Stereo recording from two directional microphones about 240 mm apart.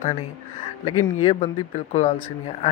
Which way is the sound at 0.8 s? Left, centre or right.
Left.